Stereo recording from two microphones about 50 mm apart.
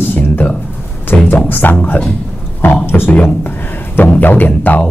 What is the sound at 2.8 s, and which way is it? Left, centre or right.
Speech, left.